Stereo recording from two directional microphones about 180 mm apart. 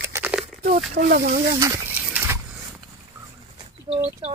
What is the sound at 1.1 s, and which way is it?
Speech, 55° right (ahead or behind).